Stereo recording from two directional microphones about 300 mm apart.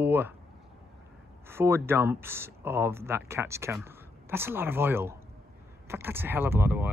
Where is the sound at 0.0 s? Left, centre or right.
Centre.